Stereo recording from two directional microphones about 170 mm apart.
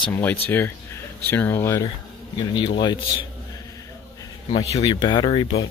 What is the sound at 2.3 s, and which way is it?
Speech, 30° left (ahead or behind).